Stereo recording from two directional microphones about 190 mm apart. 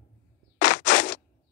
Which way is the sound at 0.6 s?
55° left (ahead or behind).